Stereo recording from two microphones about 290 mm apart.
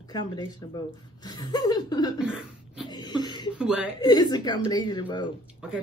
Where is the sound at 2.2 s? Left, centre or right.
Centre.